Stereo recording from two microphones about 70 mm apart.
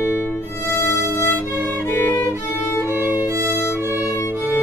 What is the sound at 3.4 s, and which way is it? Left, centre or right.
Music, left.